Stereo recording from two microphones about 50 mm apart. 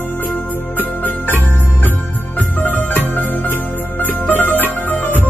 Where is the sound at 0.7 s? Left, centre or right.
Left.